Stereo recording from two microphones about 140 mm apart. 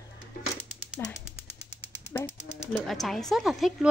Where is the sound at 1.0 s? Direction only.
15° left (ahead or behind).